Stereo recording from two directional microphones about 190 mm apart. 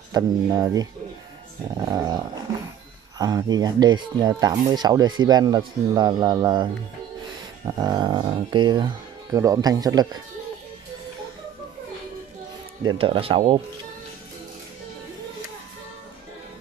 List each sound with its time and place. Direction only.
0.1 s speech: 20° right (ahead or behind)
12.8 s speech: 30° right (ahead or behind)